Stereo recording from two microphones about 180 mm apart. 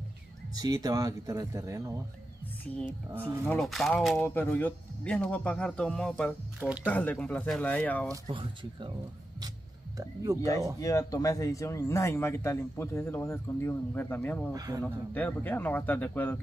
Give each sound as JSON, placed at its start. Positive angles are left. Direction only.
{"t": 0.6, "sound": "speech", "side_deg": -20}
{"t": 3.1, "sound": "speech", "side_deg": -15}
{"t": 3.4, "sound": "speech", "side_deg": 0}
{"t": 8.1, "sound": "speech", "side_deg": -30}
{"t": 9.9, "sound": "speech", "side_deg": -20}
{"t": 10.8, "sound": "speech", "side_deg": 20}